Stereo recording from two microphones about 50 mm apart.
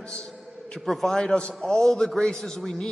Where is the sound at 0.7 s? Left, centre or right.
Centre.